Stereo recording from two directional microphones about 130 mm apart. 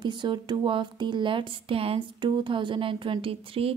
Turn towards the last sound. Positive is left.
turn(degrees=-45)  # may be behind; listen again after turning